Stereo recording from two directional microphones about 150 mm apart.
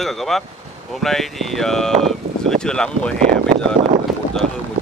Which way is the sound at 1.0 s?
Centre (ahead or behind).